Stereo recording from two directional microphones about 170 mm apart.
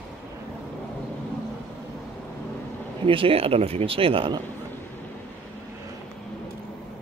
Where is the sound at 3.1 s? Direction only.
30° right (ahead or behind).